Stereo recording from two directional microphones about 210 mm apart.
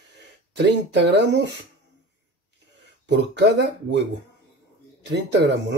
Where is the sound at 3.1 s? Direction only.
55° right (ahead or behind).